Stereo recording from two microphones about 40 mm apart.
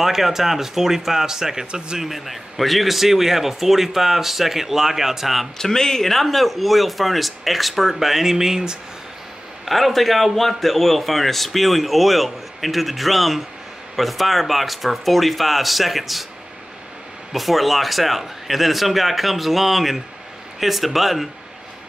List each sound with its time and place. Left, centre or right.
0.0 s a man's voice: centre
2.0 s a man's voice: centre
5.6 s a man's voice: centre
9.7 s a man's voice: centre
17.3 s a man's voice: centre